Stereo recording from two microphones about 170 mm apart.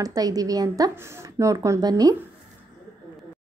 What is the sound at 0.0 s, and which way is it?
A woman's voice, 20° right (ahead or behind).